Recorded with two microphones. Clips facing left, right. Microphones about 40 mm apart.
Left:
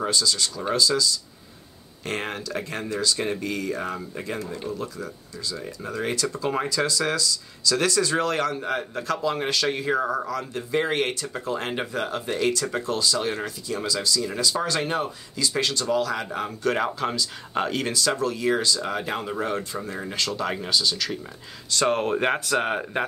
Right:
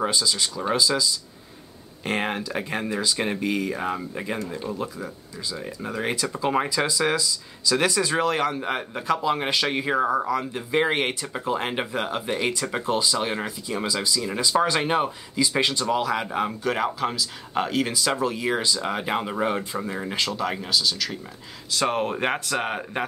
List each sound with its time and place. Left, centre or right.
0.0 s speech: centre
16.6 s speech: centre
17.9 s speech: centre
20.2 s speech: centre